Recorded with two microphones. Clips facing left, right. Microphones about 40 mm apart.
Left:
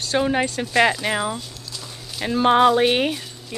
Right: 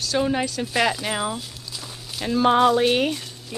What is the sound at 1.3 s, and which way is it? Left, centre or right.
Walk, centre.